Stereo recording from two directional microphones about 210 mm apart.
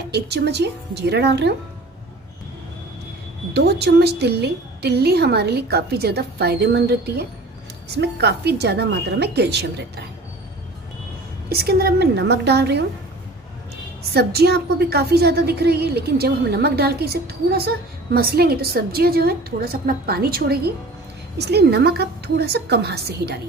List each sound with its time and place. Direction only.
0.1 s a woman's voice: 55° right (ahead or behind)
3.5 s a woman's voice: 50° right (ahead or behind)
11.4 s a woman's voice: 50° right (ahead or behind)
14.1 s a woman's voice: 50° right (ahead or behind)